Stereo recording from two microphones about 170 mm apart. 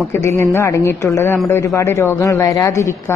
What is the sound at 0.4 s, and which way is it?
Speech, 15° left (ahead or behind).